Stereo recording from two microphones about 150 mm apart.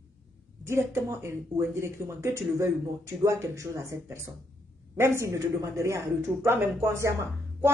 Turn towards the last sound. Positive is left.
turn(degrees=-20)  # may be behind; listen again after turning